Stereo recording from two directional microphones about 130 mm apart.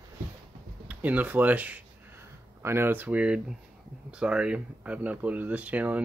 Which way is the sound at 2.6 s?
15° right (ahead or behind).